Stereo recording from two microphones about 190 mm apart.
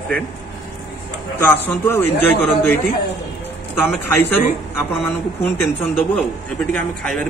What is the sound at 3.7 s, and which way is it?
Speech, 10° left (ahead or behind).